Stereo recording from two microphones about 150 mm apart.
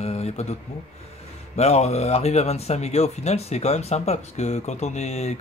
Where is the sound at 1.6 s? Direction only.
45° left (ahead or behind).